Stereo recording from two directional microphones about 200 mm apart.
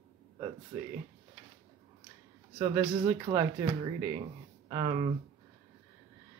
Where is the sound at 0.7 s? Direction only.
10° right (ahead or behind).